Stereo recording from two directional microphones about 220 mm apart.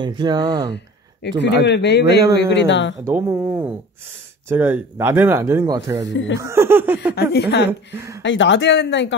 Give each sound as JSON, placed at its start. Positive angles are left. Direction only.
{"t": 0.0, "sound": "speech", "side_deg": -20}
{"t": 1.4, "sound": "speech", "side_deg": 50}
{"t": 3.1, "sound": "speech", "side_deg": -10}
{"t": 4.5, "sound": "speech", "side_deg": -10}
{"t": 6.4, "sound": "laughter", "side_deg": -10}
{"t": 7.2, "sound": "speech", "side_deg": 50}
{"t": 7.9, "sound": "speech", "side_deg": -15}
{"t": 8.2, "sound": "speech", "side_deg": 55}